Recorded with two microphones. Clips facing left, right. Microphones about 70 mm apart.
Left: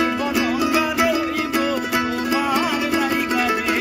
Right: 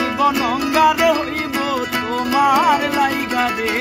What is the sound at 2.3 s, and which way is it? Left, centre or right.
Music, right.